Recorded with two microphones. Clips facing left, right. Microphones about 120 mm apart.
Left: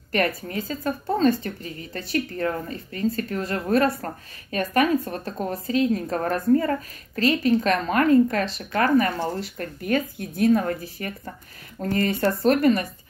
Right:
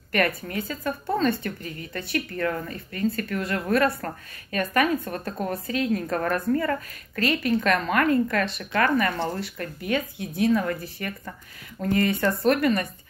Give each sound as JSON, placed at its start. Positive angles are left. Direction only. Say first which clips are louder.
{"t": 0.5, "sound": "speech", "louder": "left 2 dB", "side_deg": 35}